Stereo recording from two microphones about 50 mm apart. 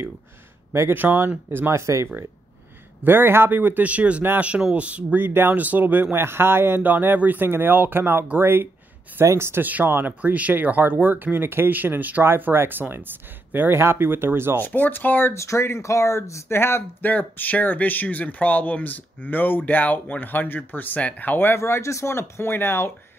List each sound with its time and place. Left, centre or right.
0.9 s speech: right
1.7 s speech: right
3.0 s speech: right
5.2 s speech: right
5.6 s speech: right
6.1 s speech: right
9.2 s speech: right
9.6 s speech: right
14.6 s speech: left
15.3 s speech: left
16.5 s speech: left
17.0 s speech: left
21.5 s speech: left